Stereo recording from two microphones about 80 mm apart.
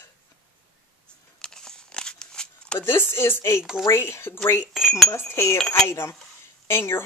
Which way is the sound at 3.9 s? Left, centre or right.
Left.